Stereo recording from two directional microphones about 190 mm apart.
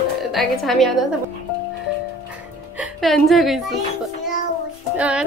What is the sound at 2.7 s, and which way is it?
Speech, centre (ahead or behind).